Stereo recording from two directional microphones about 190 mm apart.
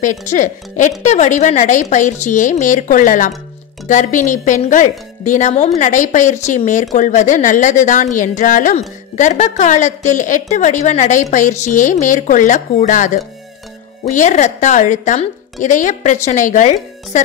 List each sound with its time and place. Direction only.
0.0 s speech: 40° left (ahead or behind)